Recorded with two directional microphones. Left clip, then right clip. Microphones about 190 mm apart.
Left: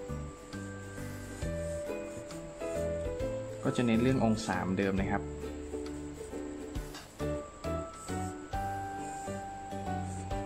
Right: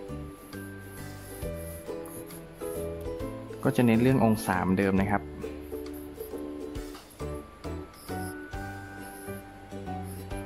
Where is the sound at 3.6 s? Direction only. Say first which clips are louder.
Right 6 dB; 30° right (ahead or behind).